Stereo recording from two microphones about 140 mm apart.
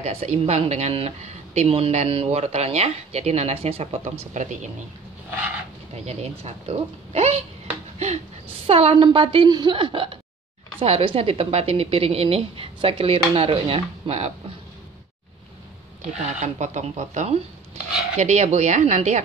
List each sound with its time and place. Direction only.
0.0 s speech: 45° right (ahead or behind)
4.4 s speech: 60° right (ahead or behind)
5.9 s speech: 50° right (ahead or behind)
8.6 s a woman's voice: 45° right (ahead or behind)
16.2 s speech: 55° right (ahead or behind)